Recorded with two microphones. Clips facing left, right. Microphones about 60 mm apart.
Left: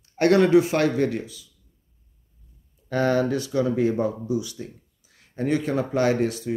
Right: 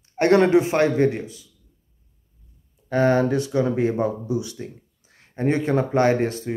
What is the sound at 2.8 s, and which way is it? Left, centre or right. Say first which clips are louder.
Speech: right 3 dB; right.